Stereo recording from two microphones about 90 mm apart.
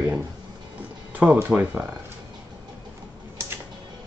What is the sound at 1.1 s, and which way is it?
Speech, 15° right (ahead or behind).